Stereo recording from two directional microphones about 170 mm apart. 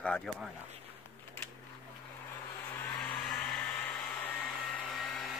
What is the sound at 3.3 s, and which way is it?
Hair dryer, 10° left (ahead or behind).